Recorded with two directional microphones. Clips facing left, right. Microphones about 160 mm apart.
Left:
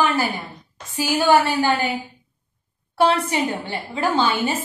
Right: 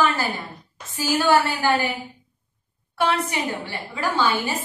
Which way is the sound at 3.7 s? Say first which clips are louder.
Left 4 dB; 20° left (ahead or behind).